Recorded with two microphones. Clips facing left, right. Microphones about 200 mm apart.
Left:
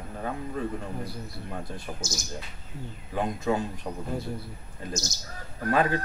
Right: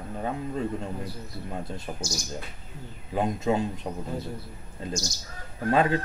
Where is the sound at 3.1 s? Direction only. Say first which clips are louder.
Right 2 dB; 25° right (ahead or behind).